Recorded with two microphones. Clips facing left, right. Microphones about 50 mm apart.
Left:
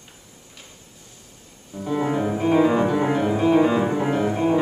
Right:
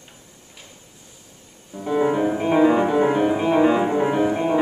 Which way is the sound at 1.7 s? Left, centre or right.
Centre.